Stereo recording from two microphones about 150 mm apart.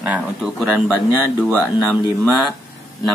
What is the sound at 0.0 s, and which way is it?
Speech, 10° right (ahead or behind).